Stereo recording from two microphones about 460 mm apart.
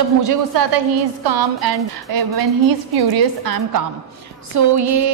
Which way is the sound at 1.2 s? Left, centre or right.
Right.